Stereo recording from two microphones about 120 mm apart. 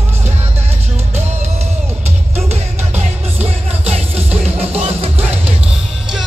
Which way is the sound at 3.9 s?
55° right (ahead or behind).